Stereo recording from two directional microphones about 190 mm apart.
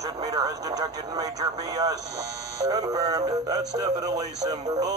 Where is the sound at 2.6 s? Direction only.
20° right (ahead or behind).